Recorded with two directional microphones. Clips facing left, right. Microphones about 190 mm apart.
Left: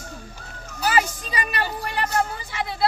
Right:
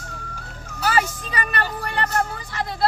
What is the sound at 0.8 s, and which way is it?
Music, 15° left (ahead or behind).